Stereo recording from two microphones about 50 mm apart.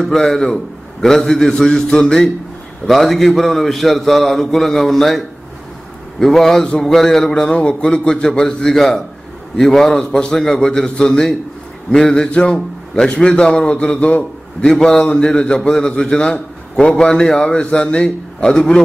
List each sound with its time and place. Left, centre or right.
0.0 s a man's voice: centre
7.5 s a man's voice: left
8.7 s a man's voice: centre; by 14.2 s left
14.6 s a man's voice: centre